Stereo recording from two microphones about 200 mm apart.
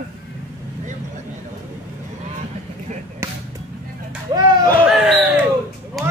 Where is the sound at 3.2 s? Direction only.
15° right (ahead or behind).